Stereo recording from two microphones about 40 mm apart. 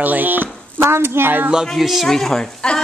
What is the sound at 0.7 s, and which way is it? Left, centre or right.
Speech, right.